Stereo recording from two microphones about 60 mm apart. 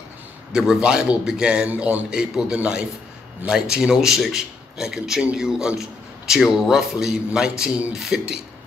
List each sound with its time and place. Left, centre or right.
0.5 s a man's voice: centre